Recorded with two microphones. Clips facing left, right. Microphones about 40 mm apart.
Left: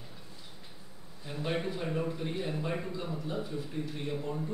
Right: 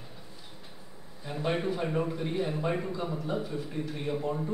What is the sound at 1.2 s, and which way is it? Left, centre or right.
A man's voice, centre.